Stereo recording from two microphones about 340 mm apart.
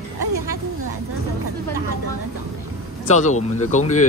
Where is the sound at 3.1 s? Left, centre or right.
Centre.